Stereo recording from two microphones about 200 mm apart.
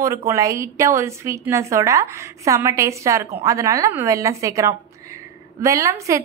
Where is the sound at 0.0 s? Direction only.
15° right (ahead or behind).